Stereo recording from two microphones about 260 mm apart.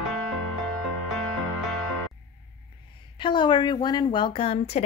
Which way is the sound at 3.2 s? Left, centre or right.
Centre.